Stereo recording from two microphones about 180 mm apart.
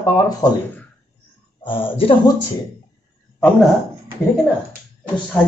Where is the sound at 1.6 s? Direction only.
30° left (ahead or behind).